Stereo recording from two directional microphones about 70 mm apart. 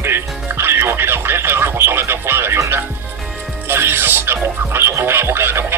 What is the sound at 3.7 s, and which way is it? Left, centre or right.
Speech, right.